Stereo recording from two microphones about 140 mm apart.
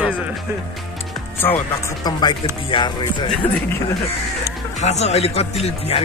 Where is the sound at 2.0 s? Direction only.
30° left (ahead or behind).